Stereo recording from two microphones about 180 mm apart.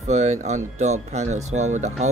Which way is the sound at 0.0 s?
40° right (ahead or behind).